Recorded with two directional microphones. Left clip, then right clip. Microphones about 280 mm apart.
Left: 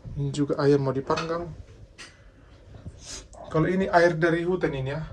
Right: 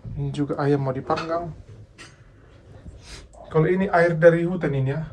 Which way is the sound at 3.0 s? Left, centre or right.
Centre.